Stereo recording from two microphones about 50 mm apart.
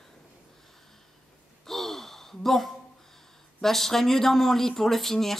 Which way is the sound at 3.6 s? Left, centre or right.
Centre.